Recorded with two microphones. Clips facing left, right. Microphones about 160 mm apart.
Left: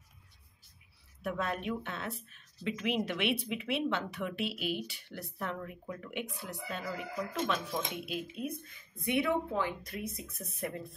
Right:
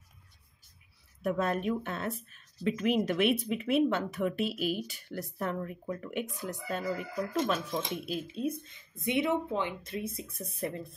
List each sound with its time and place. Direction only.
1.2 s speech: 45° right (ahead or behind)